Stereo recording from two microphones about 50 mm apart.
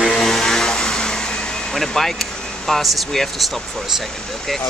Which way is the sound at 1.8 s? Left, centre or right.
Centre.